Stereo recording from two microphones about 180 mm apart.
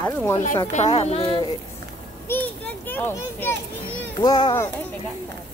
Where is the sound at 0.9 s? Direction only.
35° left (ahead or behind).